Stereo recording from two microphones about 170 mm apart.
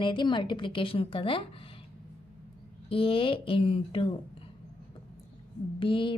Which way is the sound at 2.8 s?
30° left (ahead or behind).